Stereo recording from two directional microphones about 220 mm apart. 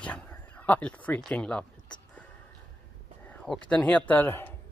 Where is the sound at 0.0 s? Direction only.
5° left (ahead or behind).